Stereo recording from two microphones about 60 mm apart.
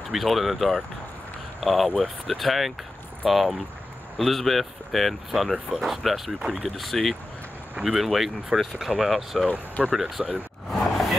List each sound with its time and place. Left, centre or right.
0.1 s speech: centre
6.8 s speech: centre
9.5 s speech: centre
9.9 s speech: centre
10.7 s a sound: centre